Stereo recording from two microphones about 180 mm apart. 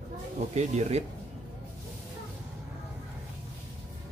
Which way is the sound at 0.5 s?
40° right (ahead or behind).